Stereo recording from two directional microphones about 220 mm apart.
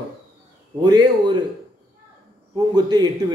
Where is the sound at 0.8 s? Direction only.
20° right (ahead or behind).